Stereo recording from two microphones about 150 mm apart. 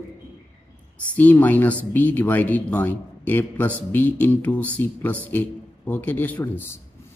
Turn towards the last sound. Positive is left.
turn(degrees=15)  # may be behind; listen again after turning